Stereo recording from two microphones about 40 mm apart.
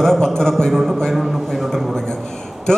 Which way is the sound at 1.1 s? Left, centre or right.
Centre.